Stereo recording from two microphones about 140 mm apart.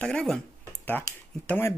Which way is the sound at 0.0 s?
5° left (ahead or behind).